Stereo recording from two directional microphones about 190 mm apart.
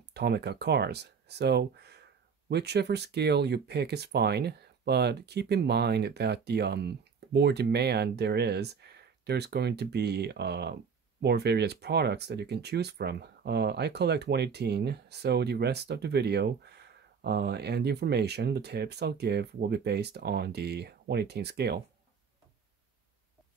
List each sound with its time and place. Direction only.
0.1 s speech: 60° right (ahead or behind)